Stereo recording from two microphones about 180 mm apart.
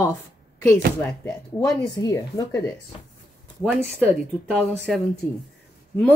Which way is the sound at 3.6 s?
5° right (ahead or behind).